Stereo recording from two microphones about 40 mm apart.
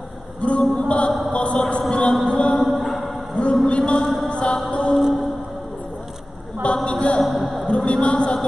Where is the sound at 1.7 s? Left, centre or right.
Left.